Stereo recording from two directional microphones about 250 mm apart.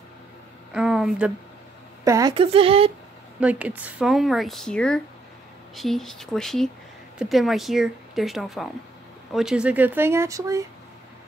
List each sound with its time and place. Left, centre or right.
0.7 s speech: centre
2.0 s speech: centre
3.3 s speech: centre